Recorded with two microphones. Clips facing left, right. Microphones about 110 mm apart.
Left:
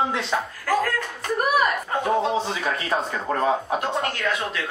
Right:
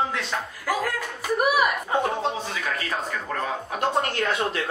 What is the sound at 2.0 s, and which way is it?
Speech, 30° left (ahead or behind).